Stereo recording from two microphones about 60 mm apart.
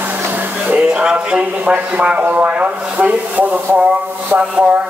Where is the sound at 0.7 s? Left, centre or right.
Centre.